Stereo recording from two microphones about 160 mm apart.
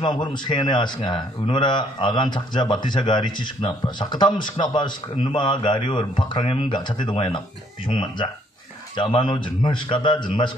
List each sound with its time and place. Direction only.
0.0 s speech: 30° left (ahead or behind)